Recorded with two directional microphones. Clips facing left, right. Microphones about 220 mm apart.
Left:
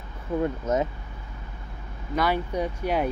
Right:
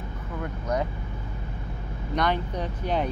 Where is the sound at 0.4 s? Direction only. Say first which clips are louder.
Left 4 dB; 25° left (ahead or behind).